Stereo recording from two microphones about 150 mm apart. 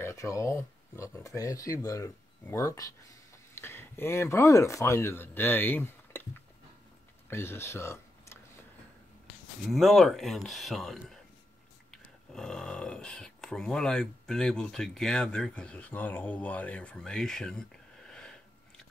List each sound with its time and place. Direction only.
0.0 s speech: 20° left (ahead or behind)
9.7 s speech: centre (ahead or behind)